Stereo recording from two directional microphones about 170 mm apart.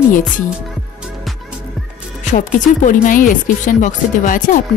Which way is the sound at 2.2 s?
50° left (ahead or behind).